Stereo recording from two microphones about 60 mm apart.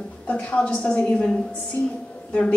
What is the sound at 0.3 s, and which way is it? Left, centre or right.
A woman's voice, left.